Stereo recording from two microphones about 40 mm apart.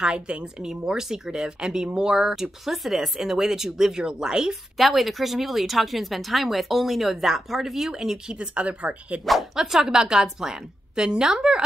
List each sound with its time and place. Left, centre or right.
0.0 s a woman's voice: right
4.7 s a woman's voice: centre
8.4 s speech: right
9.2 s speech: centre
9.6 s a woman's voice: centre